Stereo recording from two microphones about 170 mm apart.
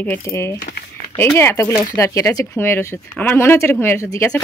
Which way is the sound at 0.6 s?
60° left (ahead or behind).